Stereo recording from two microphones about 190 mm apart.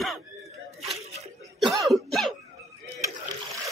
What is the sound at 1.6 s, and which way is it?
Cough, centre (ahead or behind).